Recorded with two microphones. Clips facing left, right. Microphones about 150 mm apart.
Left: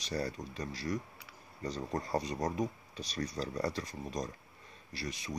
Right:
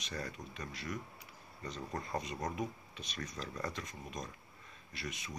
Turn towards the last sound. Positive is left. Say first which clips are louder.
# left 4 dB
turn(degrees=35)  # may be behind; listen again after turning